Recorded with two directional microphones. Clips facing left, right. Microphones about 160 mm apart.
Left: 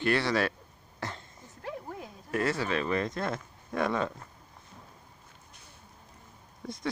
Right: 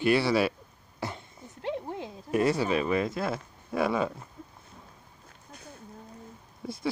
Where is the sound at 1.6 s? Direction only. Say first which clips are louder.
Right 6 dB; 25° right (ahead or behind).